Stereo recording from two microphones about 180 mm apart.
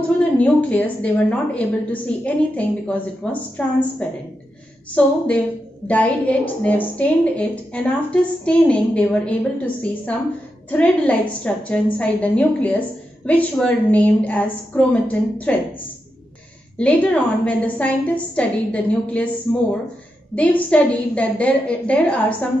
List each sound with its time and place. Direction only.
0.2 s a woman's voice: 10° left (ahead or behind)
16.7 s a woman's voice: 5° left (ahead or behind)